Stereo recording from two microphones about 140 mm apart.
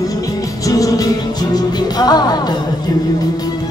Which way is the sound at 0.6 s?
25° left (ahead or behind).